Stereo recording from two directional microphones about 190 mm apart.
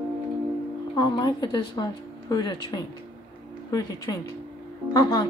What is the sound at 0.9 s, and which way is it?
A woman's voice, 20° left (ahead or behind).